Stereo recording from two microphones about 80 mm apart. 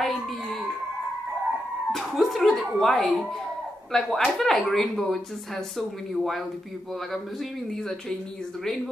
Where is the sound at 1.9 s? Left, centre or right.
Centre.